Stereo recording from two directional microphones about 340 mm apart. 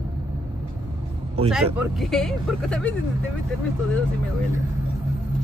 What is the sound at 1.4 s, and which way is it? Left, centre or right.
Speech, centre.